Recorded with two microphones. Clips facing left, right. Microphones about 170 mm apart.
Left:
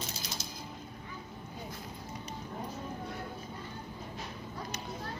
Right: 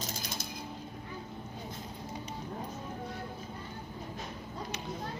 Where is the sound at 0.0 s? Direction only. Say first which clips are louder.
Right 2 dB; 50° right (ahead or behind).